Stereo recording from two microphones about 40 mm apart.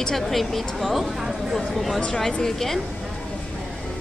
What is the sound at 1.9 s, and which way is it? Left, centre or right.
Speech, centre.